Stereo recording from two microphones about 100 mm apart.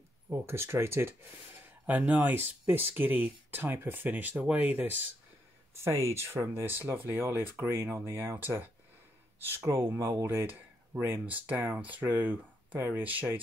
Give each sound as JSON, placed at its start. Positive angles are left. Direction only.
{"t": 0.3, "sound": "speech", "side_deg": -25}
{"t": 5.8, "sound": "speech", "side_deg": -30}